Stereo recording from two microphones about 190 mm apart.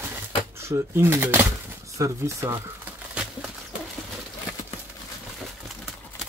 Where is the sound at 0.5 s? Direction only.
15° right (ahead or behind).